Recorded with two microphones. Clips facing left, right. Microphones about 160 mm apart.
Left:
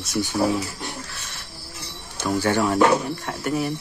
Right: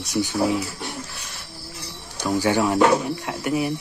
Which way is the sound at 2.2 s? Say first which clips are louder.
Right 1 dB; 15° right (ahead or behind).